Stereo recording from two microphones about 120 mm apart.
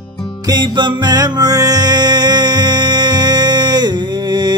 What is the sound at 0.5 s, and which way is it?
Music, 40° right (ahead or behind).